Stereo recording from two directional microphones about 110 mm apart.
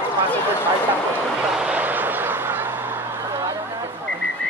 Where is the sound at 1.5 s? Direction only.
10° right (ahead or behind).